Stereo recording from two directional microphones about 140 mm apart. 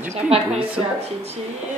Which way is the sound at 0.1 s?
45° right (ahead or behind).